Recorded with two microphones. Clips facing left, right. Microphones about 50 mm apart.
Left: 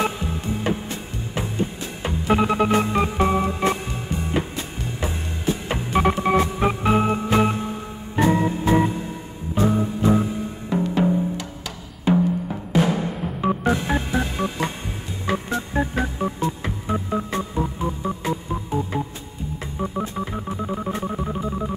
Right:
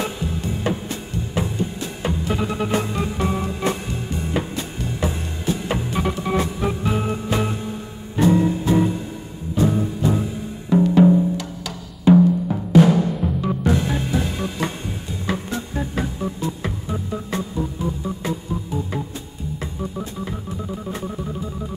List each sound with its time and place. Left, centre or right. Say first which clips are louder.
0.0 s music: left 1 dB; left
5.9 s organ: left 8 dB; left
8.2 s music: right 2 dB; left
12.1 s music: right 6 dB; left
12.7 s timpani: right 6 dB; left
13.4 s organ: left 2 dB; left
19.8 s music: left 5 dB; left